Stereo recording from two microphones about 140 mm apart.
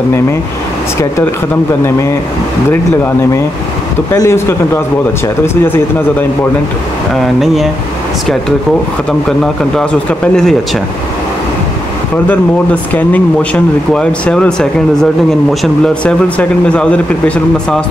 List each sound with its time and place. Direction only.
4.1 s speech: 20° left (ahead or behind)
7.2 s speech: centre (ahead or behind)
9.4 s speech: 5° left (ahead or behind)
12.9 s speech: 10° left (ahead or behind)